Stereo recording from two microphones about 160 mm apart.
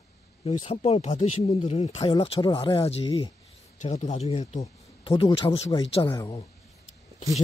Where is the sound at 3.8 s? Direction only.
50° left (ahead or behind); by 5.5 s 30° left (ahead or behind).